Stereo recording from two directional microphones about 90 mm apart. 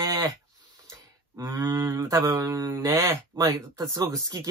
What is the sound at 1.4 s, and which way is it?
Speech, 45° right (ahead or behind).